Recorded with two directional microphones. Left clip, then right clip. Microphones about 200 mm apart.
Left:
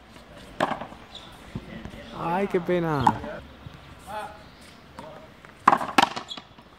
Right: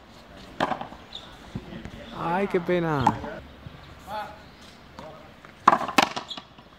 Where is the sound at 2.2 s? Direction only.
Centre (ahead or behind).